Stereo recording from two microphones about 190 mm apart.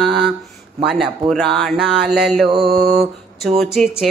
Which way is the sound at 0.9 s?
Centre (ahead or behind).